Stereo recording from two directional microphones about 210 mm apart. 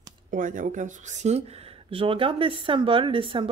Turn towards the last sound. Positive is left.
turn(degrees=-25)  # may be behind; listen again after turning